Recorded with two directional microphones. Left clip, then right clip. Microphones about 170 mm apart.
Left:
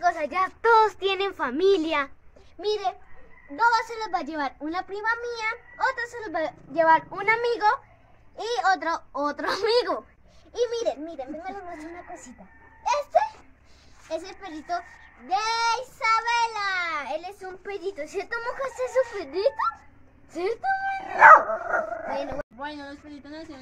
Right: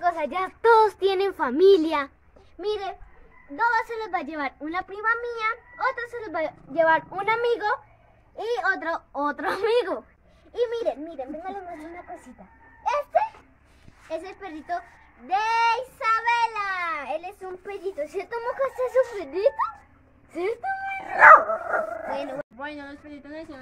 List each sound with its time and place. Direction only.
0.2 s a child's voice: 50° right (ahead or behind); by 2.1 s 75° right (ahead or behind)
2.6 s speech: 10° right (ahead or behind); by 7.6 s 40° right (ahead or behind)
8.4 s speech: 30° right (ahead or behind)
10.7 s speech: 10° right (ahead or behind)
14.0 s speech: 5° right (ahead or behind)
17.4 s speech: 40° right (ahead or behind)
20.3 s speech: 10° right (ahead or behind)